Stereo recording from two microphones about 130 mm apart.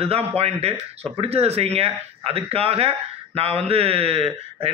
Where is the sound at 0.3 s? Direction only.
50° right (ahead or behind).